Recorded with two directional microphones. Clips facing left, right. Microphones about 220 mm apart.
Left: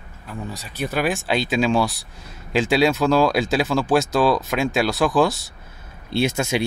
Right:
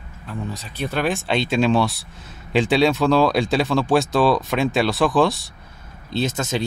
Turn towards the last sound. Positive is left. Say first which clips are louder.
# left 2 dB
turn(degrees=10)  # may be behind; listen again after turning